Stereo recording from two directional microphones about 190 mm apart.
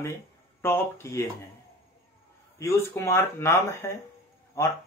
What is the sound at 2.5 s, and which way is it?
Speech, 15° left (ahead or behind).